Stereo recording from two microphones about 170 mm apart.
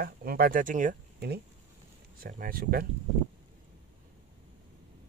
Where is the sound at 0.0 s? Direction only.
60° right (ahead or behind).